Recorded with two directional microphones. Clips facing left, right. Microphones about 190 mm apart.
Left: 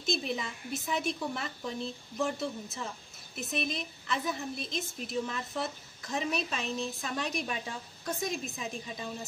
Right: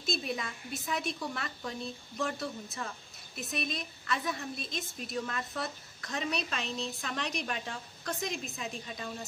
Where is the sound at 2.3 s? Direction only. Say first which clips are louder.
Left 2 dB; 20° left (ahead or behind).